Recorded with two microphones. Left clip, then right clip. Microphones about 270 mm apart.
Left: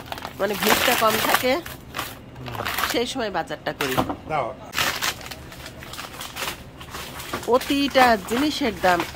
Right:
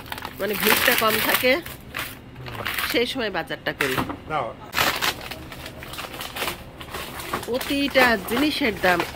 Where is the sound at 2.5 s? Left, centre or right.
Left.